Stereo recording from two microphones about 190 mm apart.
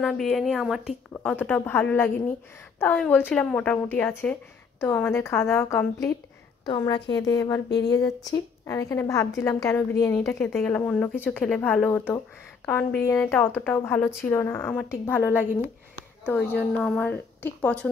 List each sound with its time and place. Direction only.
0.0 s a woman's voice: centre (ahead or behind)
16.8 s a woman's voice: 5° left (ahead or behind)